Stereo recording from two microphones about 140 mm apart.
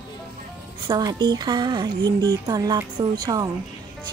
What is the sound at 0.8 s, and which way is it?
Speech, 30° right (ahead or behind).